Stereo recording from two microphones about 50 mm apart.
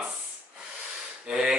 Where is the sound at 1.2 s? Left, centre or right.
Centre.